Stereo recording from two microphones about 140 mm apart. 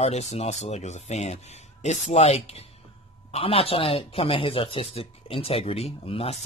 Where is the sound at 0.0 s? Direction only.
50° left (ahead or behind).